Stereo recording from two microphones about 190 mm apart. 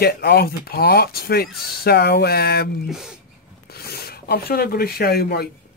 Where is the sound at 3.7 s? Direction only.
55° left (ahead or behind).